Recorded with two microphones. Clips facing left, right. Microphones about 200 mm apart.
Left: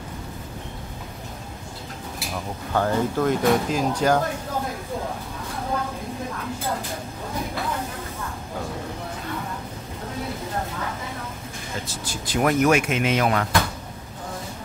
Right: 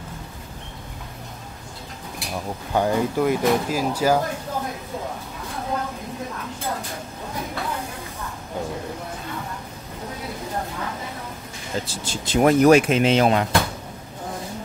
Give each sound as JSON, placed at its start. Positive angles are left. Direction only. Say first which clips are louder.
{"t": 2.7, "sound": "speech", "louder": "right 1 dB", "side_deg": -15}
{"t": 11.9, "sound": "speech", "louder": "right 2 dB", "side_deg": -25}